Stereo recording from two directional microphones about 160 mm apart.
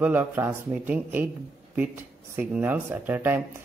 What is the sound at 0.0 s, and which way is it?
Speech, 10° right (ahead or behind).